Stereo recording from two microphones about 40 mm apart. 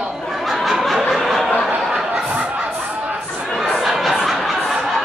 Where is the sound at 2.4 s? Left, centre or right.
Right.